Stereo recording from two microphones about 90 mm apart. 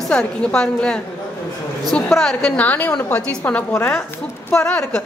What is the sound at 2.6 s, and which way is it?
A woman's voice, 15° left (ahead or behind).